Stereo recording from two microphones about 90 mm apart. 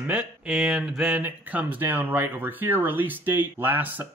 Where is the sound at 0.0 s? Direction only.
15° right (ahead or behind).